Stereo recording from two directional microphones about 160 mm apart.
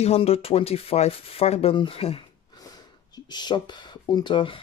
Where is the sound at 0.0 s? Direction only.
40° left (ahead or behind).